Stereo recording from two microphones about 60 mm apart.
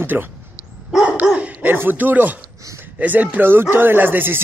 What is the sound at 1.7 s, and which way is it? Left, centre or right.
Speech, right.